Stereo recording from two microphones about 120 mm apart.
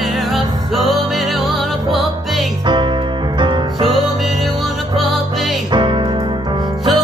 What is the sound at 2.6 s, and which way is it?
Music, 40° right (ahead or behind).